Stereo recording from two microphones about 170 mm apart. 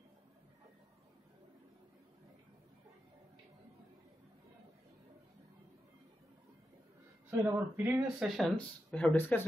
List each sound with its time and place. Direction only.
7.2 s speech: 10° right (ahead or behind); by 9.5 s 10° left (ahead or behind)